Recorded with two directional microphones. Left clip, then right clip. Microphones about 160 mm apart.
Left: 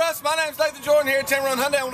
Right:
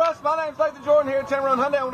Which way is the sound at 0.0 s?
70° left (ahead or behind).